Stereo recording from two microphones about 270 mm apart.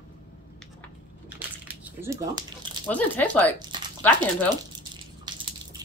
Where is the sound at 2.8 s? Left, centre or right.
Centre.